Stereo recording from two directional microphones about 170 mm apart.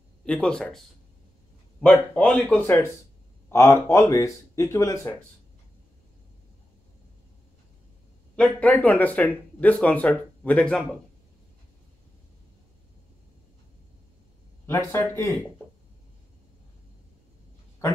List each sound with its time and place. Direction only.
0.2 s speech: 5° left (ahead or behind)
1.8 s speech: 5° left (ahead or behind)
8.4 s speech: 10° left (ahead or behind)
14.7 s speech: 10° left (ahead or behind)